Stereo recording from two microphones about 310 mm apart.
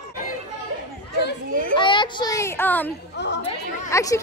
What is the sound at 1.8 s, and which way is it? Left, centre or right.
Child singing, centre.